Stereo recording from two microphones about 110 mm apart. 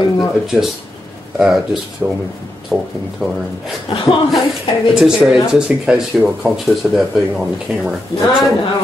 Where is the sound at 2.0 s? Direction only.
20° right (ahead or behind).